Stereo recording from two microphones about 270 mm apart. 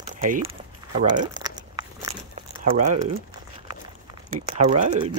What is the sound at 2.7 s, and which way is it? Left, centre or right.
Speech, right.